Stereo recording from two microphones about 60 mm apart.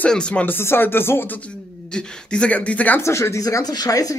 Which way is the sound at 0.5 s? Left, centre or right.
Left.